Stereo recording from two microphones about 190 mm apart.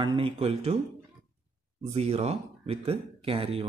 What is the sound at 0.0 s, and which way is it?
Speech, 25° right (ahead or behind).